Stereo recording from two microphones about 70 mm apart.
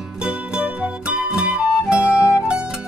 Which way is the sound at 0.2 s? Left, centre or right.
Centre.